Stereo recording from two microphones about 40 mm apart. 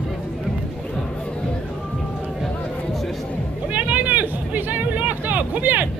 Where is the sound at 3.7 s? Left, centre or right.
Right.